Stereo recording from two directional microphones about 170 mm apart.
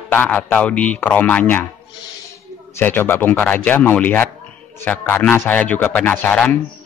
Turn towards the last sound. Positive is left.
turn(degrees=10)  # may be behind; listen again after turning